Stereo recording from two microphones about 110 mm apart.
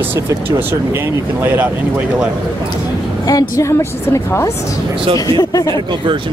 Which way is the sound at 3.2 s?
35° left (ahead or behind).